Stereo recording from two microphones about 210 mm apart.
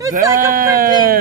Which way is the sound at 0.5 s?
45° right (ahead or behind).